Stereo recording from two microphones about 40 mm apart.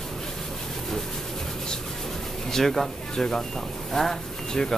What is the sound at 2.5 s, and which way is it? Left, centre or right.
A man's voice, centre.